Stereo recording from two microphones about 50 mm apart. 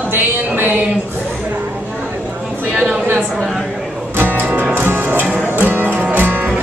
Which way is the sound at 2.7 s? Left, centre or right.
Right.